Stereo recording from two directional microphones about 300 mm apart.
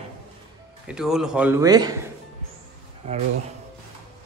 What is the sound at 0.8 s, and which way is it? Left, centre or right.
Speech, centre.